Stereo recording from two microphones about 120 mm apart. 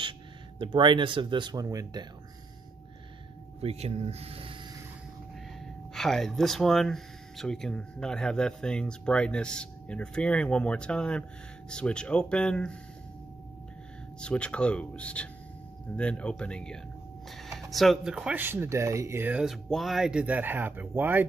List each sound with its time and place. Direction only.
0.6 s speech: 40° right (ahead or behind)
3.6 s speech: 60° right (ahead or behind)
5.9 s speech: 5° left (ahead or behind)
14.2 s speech: 10° left (ahead or behind); by 19.3 s 20° right (ahead or behind)
19.3 s speech: centre (ahead or behind)